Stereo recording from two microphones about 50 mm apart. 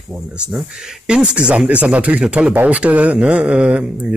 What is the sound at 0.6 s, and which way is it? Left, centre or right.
Speech, right.